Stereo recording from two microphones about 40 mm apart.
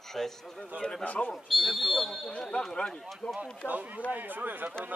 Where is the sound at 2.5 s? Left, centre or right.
Centre.